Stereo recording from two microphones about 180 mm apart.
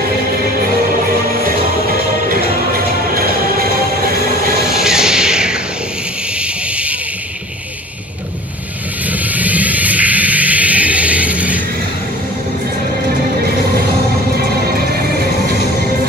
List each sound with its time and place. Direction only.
1.9 s music: 55° right (ahead or behind)
4.7 s a sound: 5° right (ahead or behind)
9.0 s vehicle: 10° right (ahead or behind)